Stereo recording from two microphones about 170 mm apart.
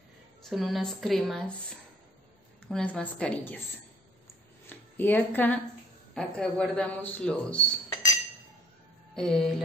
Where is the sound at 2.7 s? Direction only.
5° left (ahead or behind).